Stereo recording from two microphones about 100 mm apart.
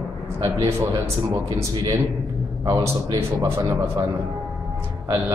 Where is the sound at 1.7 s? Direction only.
35° right (ahead or behind).